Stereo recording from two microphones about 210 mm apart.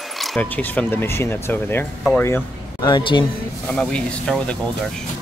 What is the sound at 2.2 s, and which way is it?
Speech, 15° left (ahead or behind).